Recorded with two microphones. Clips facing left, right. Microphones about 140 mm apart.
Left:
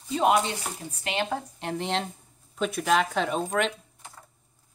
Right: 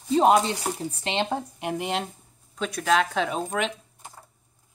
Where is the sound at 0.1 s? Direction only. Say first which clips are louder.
Right 4 dB; 35° right (ahead or behind).